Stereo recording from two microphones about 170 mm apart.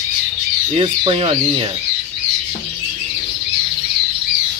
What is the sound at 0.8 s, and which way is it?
Speech, 35° right (ahead or behind).